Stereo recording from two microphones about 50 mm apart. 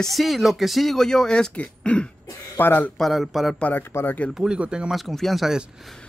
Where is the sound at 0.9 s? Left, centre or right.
Centre.